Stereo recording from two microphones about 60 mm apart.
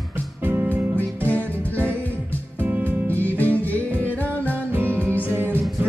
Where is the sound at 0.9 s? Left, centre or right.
Left.